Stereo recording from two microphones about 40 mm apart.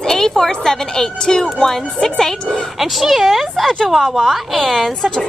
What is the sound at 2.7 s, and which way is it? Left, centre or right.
Speech, centre.